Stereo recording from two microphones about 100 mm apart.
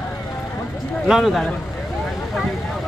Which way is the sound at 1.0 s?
Centre (ahead or behind).